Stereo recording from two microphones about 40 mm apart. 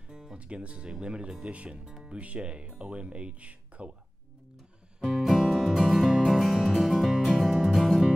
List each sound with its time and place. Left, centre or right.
0.1 s music: centre
0.4 s speech: right
5.0 s music: centre